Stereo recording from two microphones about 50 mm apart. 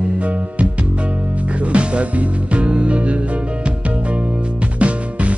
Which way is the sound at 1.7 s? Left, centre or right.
Right.